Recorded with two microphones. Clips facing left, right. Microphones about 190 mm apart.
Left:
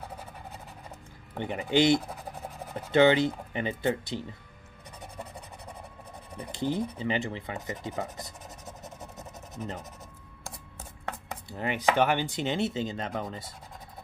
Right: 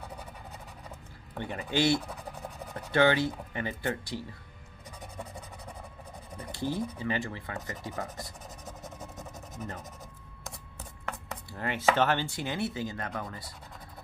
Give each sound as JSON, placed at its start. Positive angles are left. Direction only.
{"t": 1.3, "sound": "speech", "side_deg": 20}
{"t": 6.5, "sound": "speech", "side_deg": 20}
{"t": 11.4, "sound": "speech", "side_deg": 20}